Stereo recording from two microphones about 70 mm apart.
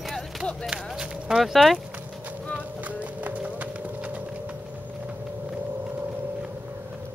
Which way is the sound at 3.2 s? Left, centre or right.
Right.